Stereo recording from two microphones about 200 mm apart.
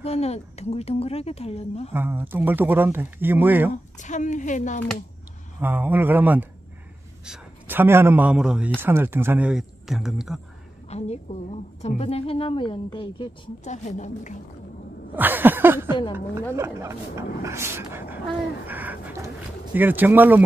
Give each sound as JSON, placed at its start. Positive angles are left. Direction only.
{"t": 0.0, "sound": "a woman's voice", "side_deg": 30}
{"t": 2.0, "sound": "speech", "side_deg": -10}
{"t": 3.7, "sound": "a woman's voice", "side_deg": 40}
{"t": 5.6, "sound": "a man's voice", "side_deg": -10}
{"t": 10.9, "sound": "a woman's voice", "side_deg": 30}
{"t": 15.1, "sound": "speech", "side_deg": -10}
{"t": 18.7, "sound": "bird", "side_deg": -10}